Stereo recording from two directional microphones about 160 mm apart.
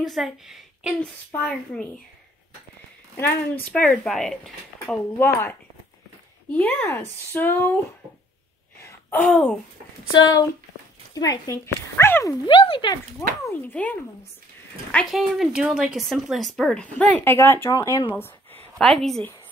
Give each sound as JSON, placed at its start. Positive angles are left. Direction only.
{"t": 0.0, "sound": "a woman's voice", "side_deg": 0}
{"t": 3.2, "sound": "speech", "side_deg": 15}
{"t": 9.2, "sound": "speech", "side_deg": 5}
{"t": 10.1, "sound": "speech", "side_deg": 25}
{"t": 12.4, "sound": "speech", "side_deg": 35}
{"t": 13.5, "sound": "speech", "side_deg": 10}
{"t": 18.1, "sound": "a sound", "side_deg": 15}
{"t": 18.8, "sound": "speech", "side_deg": 5}